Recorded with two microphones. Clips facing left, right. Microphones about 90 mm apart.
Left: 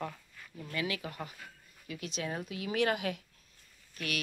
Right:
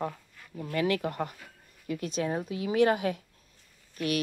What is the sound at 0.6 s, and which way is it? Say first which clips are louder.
Speech: right 8 dB; 45° right (ahead or behind).